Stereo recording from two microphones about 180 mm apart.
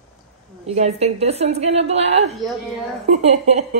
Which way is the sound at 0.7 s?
35° right (ahead or behind).